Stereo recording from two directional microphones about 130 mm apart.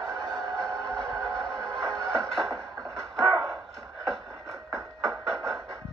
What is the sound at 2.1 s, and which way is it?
Music, centre (ahead or behind).